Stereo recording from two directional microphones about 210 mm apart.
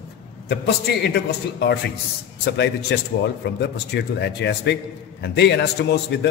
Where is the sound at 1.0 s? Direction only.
50° left (ahead or behind).